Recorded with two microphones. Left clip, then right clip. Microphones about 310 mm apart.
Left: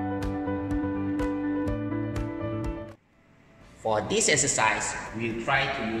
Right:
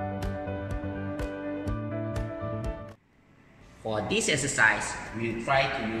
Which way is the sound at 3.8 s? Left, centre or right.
Centre.